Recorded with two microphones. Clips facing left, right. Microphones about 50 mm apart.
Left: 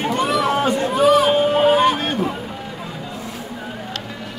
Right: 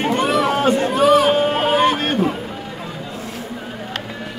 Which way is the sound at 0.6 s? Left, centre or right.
Right.